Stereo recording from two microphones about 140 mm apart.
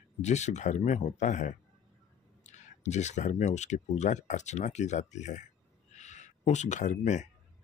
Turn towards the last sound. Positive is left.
turn(degrees=60)  # may be behind; listen again after turning